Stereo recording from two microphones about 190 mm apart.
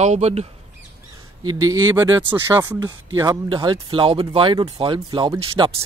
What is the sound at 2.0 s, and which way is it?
Speech, 15° right (ahead or behind).